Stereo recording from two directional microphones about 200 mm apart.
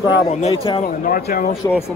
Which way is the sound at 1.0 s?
45° left (ahead or behind).